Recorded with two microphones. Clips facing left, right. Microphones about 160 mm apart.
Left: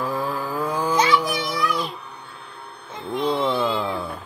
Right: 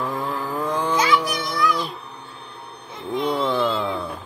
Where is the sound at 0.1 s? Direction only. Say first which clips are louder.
Left 1 dB; 20° right (ahead or behind).